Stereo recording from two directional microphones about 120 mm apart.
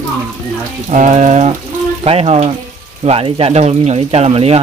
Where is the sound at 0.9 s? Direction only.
90° right.